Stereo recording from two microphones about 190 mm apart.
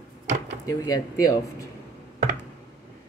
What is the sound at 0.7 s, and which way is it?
Speech, 20° left (ahead or behind).